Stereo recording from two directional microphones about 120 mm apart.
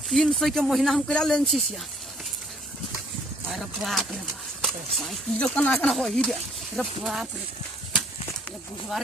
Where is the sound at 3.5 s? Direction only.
Centre (ahead or behind).